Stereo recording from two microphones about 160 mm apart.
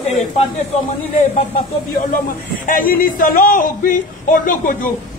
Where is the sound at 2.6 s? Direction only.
60° left (ahead or behind).